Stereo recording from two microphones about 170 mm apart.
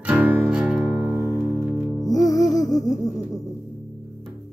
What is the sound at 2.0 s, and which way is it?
Music, 20° left (ahead or behind).